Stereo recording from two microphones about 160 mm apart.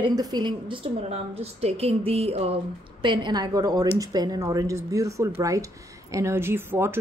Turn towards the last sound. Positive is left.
turn(degrees=-15)  # may be behind; listen again after turning